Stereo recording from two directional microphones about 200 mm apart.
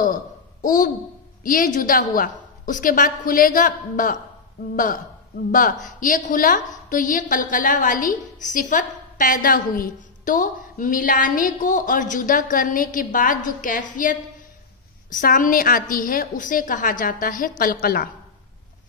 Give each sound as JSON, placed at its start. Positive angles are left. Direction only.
{"t": 0.0, "sound": "a woman's voice", "side_deg": 40}